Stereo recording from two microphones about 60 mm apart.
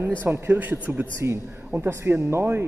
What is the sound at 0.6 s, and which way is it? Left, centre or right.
Speech, right.